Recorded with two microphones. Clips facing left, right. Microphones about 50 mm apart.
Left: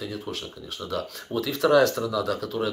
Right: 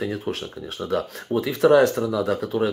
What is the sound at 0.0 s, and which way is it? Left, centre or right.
Speech, right.